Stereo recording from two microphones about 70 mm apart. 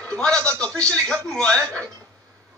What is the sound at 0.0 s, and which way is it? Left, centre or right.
A man's voice, centre.